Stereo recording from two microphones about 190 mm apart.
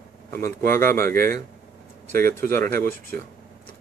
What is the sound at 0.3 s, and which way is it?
Speech, 50° right (ahead or behind).